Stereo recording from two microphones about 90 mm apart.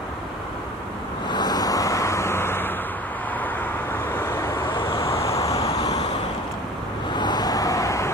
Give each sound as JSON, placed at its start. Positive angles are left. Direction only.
{"t": 1.3, "sound": "vehicle", "side_deg": 50}
{"t": 4.7, "sound": "vehicle", "side_deg": 80}
{"t": 5.4, "sound": "vehicle", "side_deg": 40}
{"t": 7.2, "sound": "vehicle", "side_deg": 50}